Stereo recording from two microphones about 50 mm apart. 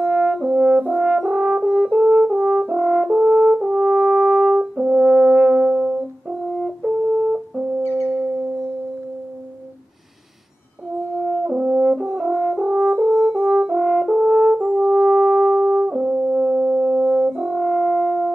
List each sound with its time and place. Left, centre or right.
0.0 s french horn: centre
6.9 s brass instrument: centre
11.1 s french horn: centre
11.5 s french horn: right
14.8 s brass instrument: centre